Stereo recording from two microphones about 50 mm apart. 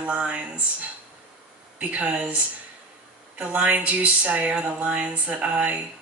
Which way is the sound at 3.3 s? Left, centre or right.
Right.